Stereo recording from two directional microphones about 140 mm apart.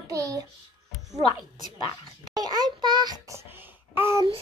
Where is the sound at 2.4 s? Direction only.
30° right (ahead or behind).